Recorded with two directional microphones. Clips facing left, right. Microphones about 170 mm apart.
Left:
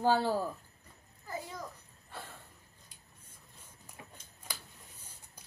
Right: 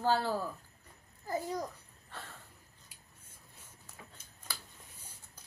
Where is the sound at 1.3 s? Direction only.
40° right (ahead or behind).